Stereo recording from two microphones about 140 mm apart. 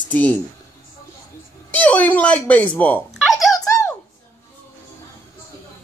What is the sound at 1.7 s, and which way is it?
A man's voice, 10° left (ahead or behind).